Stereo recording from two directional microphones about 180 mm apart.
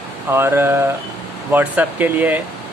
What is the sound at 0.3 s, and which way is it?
Speech, 15° right (ahead or behind).